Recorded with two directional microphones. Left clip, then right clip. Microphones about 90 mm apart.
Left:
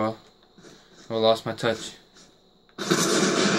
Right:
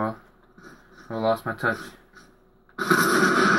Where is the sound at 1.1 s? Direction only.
30° left (ahead or behind).